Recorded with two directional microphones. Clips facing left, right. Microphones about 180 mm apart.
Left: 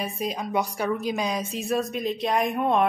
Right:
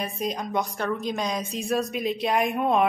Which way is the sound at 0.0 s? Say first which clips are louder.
Even; centre (ahead or behind).